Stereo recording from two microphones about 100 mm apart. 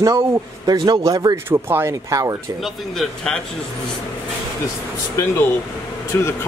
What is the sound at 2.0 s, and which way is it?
Speech, 35° right (ahead or behind).